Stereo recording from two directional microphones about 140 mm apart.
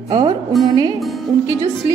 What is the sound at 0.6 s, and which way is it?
Speech, 30° right (ahead or behind).